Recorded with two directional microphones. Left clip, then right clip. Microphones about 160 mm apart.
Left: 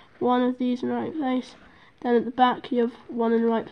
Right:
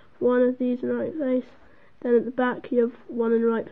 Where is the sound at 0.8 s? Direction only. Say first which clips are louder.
Right 1 dB; 40° left (ahead or behind).